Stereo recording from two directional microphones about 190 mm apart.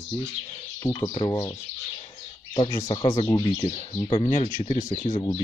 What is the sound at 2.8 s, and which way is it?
Speech, 30° left (ahead or behind).